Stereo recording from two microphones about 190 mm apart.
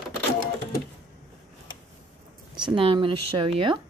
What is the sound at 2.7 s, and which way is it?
Speech, 25° right (ahead or behind).